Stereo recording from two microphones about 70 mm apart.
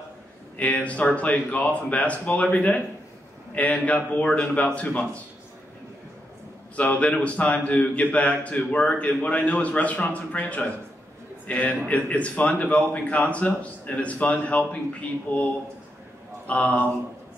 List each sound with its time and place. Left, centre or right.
0.6 s speech: left
6.8 s a man's voice: centre
16.4 s speech: centre